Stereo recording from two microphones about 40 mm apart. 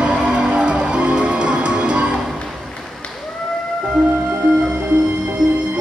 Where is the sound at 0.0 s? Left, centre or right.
Right.